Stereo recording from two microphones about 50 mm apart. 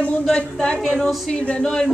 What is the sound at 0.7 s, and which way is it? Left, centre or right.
Speech, centre.